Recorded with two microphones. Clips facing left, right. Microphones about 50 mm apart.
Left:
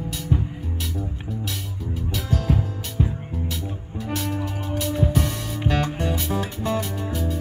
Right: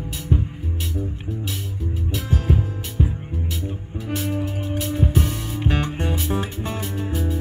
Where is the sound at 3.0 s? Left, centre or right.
Centre.